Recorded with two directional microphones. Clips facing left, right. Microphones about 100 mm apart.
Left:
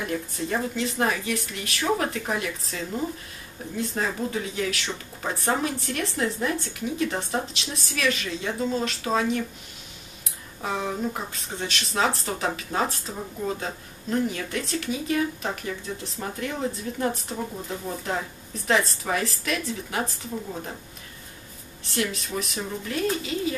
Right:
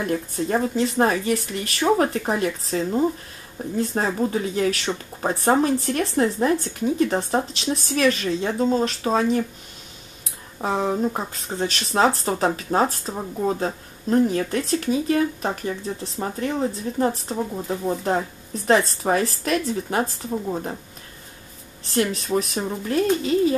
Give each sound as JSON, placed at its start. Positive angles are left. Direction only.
{"t": 0.1, "sound": "a woman's voice", "side_deg": -35}
{"t": 10.6, "sound": "a woman's voice", "side_deg": -35}
{"t": 21.8, "sound": "a woman's voice", "side_deg": -35}